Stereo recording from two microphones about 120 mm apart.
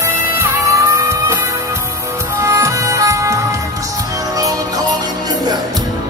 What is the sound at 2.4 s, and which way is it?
Music, 25° right (ahead or behind).